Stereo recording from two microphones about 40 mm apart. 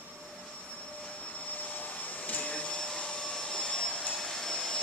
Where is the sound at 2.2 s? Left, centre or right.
Left.